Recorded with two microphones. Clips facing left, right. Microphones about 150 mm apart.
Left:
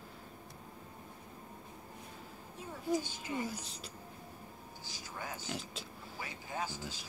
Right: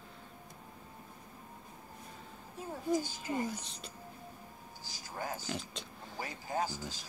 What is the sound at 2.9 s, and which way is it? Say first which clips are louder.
Speech: right 2 dB; 40° right (ahead or behind).